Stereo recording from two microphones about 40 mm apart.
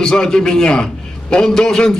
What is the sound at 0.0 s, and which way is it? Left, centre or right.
A man's voice, centre.